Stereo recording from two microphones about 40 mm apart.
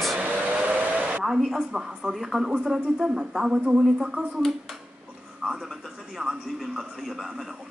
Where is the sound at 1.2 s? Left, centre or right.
Centre.